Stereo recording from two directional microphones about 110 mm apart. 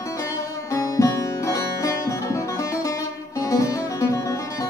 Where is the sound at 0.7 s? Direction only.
30° left (ahead or behind).